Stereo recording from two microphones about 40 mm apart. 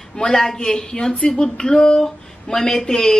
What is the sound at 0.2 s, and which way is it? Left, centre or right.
A woman's voice, centre.